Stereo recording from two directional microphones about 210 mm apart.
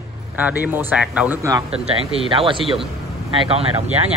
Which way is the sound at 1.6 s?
30° right (ahead or behind).